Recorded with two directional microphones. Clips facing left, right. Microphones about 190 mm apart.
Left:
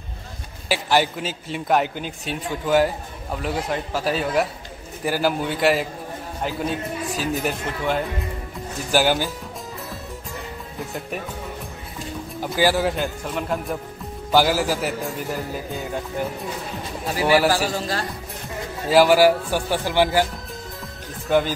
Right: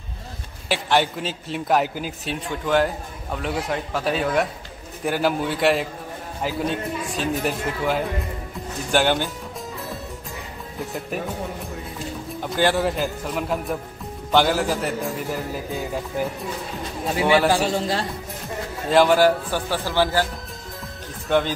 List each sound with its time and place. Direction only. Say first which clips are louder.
0.7 s a man's voice: even; 5° left (ahead or behind)
10.8 s a man's voice: right 1 dB; centre (ahead or behind)
12.5 s a man's voice: even; 5° left (ahead or behind)
17.6 s speech: right 2 dB; 25° right (ahead or behind)
18.9 s a man's voice: left 1 dB; 5° left (ahead or behind)
21.3 s a man's voice: left 1 dB; 5° left (ahead or behind)